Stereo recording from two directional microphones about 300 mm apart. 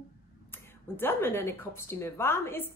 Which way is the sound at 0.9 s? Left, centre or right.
Centre.